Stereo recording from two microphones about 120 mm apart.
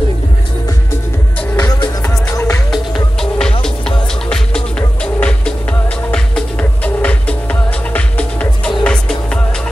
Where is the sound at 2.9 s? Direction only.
5° left (ahead or behind).